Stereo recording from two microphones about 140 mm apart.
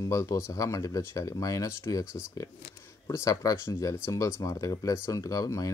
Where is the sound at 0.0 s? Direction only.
20° left (ahead or behind).